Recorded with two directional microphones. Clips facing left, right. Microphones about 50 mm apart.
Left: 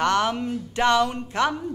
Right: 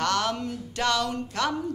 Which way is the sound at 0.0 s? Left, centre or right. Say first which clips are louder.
Left 4 dB; left.